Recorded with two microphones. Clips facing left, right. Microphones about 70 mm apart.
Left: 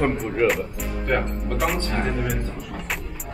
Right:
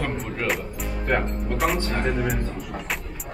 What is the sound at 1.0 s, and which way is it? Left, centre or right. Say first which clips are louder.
Speech: even; centre.